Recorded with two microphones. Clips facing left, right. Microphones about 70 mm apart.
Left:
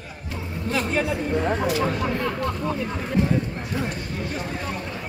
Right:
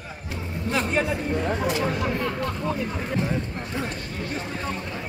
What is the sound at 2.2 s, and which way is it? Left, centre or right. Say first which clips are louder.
A man's voice: left 1 dB; left.